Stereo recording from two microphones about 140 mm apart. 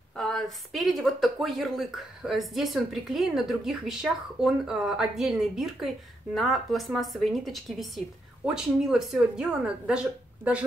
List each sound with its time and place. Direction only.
0.1 s speech: 5° left (ahead or behind)